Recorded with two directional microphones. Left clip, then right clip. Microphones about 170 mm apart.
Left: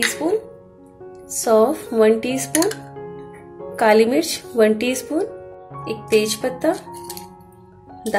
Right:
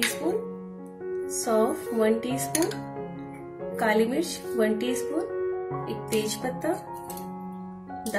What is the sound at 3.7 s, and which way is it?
A woman's voice, 45° left (ahead or behind).